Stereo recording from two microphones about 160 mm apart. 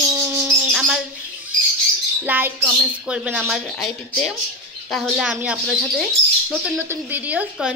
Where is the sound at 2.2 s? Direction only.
10° right (ahead or behind).